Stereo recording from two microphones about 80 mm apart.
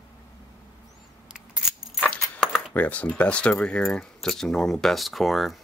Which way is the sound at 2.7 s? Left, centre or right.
Centre.